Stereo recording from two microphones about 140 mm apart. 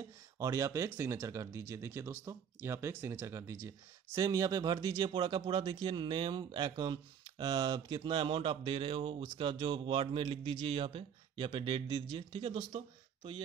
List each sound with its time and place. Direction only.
0.4 s speech: 20° right (ahead or behind); by 13.4 s 40° right (ahead or behind)